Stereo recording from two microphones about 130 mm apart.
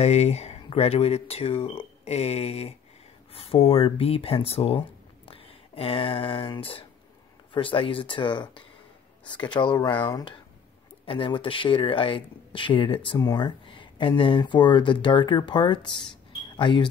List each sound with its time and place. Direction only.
0.0 s speech: 55° left (ahead or behind); by 16.9 s 40° left (ahead or behind)